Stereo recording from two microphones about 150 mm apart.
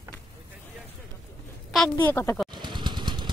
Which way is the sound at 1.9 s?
15° left (ahead or behind).